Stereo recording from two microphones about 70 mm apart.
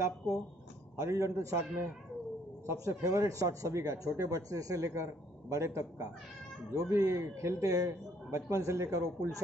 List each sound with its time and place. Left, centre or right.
0.3 s speech: right
2.6 s speech: right